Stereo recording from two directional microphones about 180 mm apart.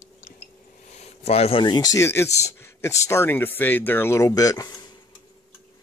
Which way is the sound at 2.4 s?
15° left (ahead or behind).